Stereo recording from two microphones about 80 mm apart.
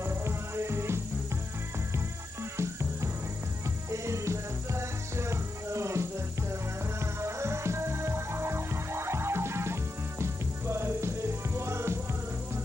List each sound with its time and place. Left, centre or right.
0.0 s music: right
2.5 s music: right
7.2 s music: right